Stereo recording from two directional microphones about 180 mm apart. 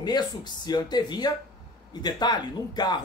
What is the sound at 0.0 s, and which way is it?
A man's voice, 25° left (ahead or behind).